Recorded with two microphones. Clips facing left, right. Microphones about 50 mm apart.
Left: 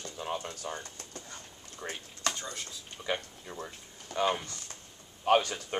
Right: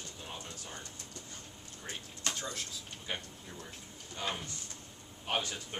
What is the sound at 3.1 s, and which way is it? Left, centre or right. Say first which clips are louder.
Speech: left 5 dB; left.